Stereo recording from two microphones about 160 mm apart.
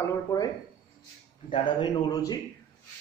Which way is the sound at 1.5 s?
30° left (ahead or behind).